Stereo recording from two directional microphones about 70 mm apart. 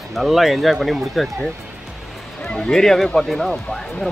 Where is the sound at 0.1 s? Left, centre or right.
Centre.